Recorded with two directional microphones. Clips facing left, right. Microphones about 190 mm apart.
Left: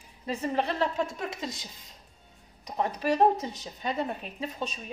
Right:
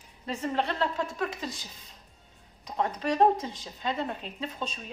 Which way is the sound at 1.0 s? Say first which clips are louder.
Even; 30° left (ahead or behind).